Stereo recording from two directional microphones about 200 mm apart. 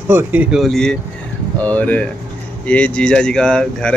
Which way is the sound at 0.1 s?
10° right (ahead or behind).